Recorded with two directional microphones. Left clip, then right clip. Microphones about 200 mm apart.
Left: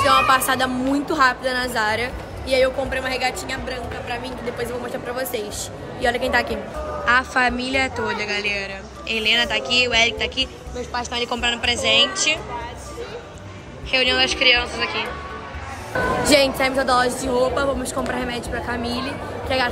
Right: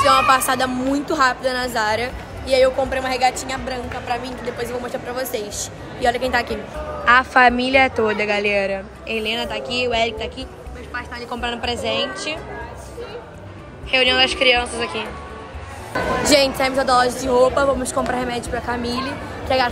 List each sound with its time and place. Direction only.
0.0 s a woman's voice: 5° left (ahead or behind)
4.2 s a woman's voice: 5° left (ahead or behind)
7.1 s a woman's voice: centre (ahead or behind)
10.9 s a woman's voice: 20° left (ahead or behind)
11.4 s a woman's voice: 5° right (ahead or behind)
13.8 s a woman's voice: centre (ahead or behind)
16.3 s a woman's voice: 10° left (ahead or behind)